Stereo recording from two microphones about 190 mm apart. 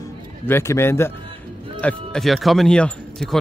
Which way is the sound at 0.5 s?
10° left (ahead or behind).